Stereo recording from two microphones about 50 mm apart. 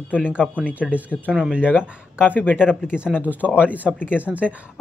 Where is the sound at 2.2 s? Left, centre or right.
Left.